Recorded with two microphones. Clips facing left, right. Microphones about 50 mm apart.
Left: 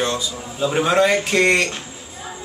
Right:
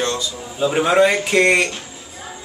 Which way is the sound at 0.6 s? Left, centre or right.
Centre.